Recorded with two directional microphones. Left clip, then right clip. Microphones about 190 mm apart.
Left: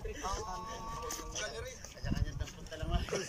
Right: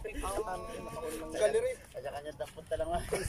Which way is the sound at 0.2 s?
65° right (ahead or behind).